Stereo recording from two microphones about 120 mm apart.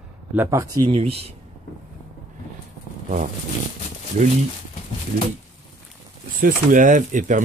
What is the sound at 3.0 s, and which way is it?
Speech, 90° right.